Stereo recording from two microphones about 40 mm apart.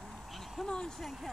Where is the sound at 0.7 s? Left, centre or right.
Centre.